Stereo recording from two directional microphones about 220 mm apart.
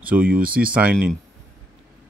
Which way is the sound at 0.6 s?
5° right (ahead or behind).